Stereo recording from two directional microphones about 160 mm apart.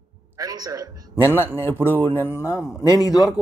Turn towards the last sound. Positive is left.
turn(degrees=25)  # may be behind; listen again after turning